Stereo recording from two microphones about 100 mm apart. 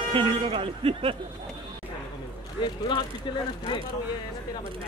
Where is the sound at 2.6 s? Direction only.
50° left (ahead or behind).